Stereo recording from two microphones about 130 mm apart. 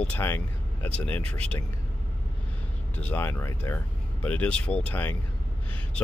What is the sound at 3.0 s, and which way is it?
Speech, 15° left (ahead or behind).